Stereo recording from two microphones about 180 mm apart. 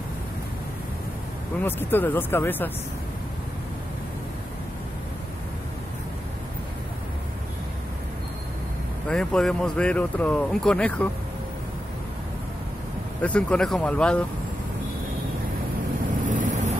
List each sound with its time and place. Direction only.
1.6 s speech: 10° left (ahead or behind)
9.1 s speech: 5° left (ahead or behind)
13.2 s speech: 5° left (ahead or behind)
16.3 s vehicle: 45° right (ahead or behind)